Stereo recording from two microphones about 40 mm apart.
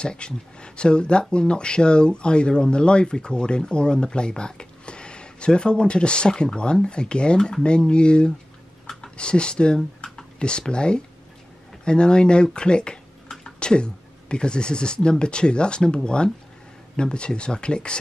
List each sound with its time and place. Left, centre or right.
0.0 s speech: left